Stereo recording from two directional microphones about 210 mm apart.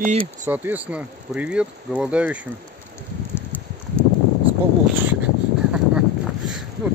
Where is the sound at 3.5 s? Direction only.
10° left (ahead or behind).